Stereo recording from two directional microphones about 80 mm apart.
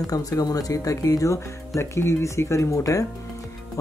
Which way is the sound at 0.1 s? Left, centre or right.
Left.